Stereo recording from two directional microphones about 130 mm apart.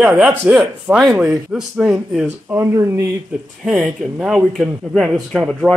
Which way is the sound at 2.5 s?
20° right (ahead or behind).